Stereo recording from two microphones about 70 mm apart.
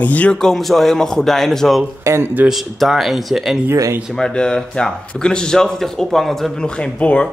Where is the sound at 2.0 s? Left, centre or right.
Right.